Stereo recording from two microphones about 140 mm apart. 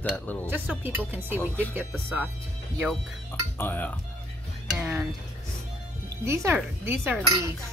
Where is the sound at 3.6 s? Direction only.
15° left (ahead or behind).